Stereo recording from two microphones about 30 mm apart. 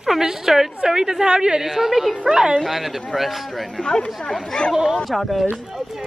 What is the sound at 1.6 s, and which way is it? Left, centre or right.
Speech, centre.